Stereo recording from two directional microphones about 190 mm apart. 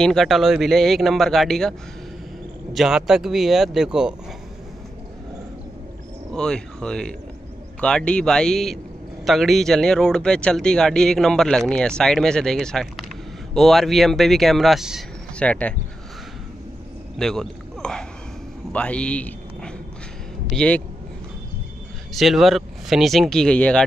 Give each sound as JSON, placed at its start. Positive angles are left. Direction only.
{"t": 0.0, "sound": "a man's voice", "side_deg": 0}
{"t": 6.3, "sound": "speech", "side_deg": 5}
{"t": 17.2, "sound": "speech", "side_deg": 5}
{"t": 22.1, "sound": "speech", "side_deg": 0}